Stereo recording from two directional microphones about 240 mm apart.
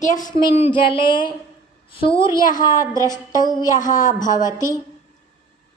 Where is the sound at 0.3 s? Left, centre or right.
Left.